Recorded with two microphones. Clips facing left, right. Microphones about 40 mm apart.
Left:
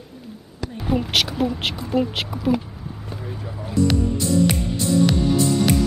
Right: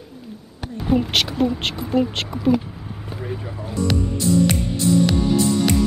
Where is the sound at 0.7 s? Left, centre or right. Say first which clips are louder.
Right 2 dB; centre.